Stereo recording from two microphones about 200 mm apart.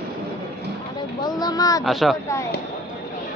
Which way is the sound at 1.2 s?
20° left (ahead or behind).